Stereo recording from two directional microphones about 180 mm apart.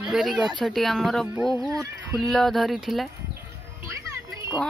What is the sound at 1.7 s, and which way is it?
Speech, 20° right (ahead or behind).